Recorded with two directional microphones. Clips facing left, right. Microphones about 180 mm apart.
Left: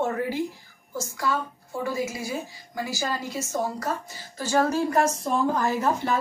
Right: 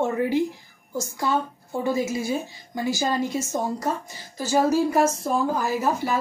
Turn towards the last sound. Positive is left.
turn(degrees=-10)  # may be behind; listen again after turning